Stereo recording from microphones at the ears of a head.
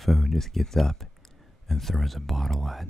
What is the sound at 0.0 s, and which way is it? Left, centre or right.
Speech, centre.